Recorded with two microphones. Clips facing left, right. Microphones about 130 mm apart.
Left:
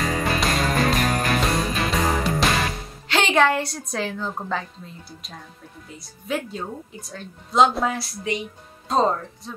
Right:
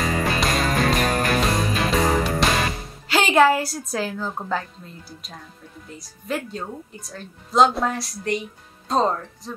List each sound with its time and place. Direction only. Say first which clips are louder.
0.0 s music: right 1 dB; centre (ahead or behind)
5.9 s a woman's voice: even; centre (ahead or behind)